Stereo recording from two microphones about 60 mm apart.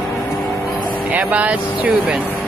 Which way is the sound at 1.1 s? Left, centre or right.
Right.